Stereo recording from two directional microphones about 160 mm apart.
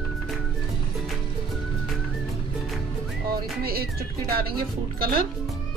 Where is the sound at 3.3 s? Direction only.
70° right (ahead or behind).